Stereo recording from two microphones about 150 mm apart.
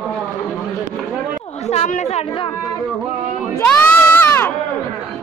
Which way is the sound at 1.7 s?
50° left (ahead or behind).